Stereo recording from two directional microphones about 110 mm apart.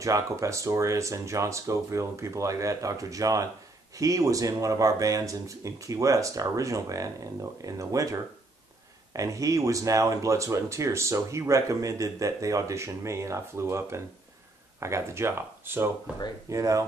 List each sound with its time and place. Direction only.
0.0 s speech: 30° right (ahead or behind)